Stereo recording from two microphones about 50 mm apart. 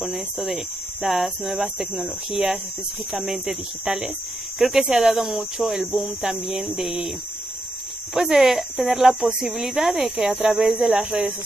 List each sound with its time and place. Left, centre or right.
0.0 s speech: centre
2.3 s speech: right
3.2 s speech: centre
4.7 s speech: centre
8.1 s speech: centre
9.4 s speech: centre
11.0 s speech: right